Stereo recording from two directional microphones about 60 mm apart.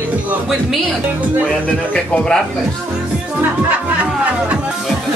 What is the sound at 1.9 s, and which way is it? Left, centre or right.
Speech, centre.